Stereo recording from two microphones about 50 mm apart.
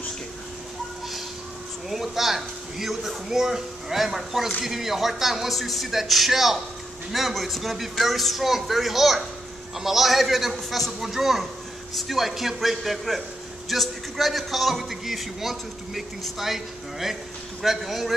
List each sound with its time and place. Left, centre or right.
1.9 s a man's voice: centre